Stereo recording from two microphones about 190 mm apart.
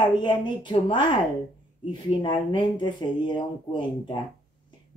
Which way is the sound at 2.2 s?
25° left (ahead or behind).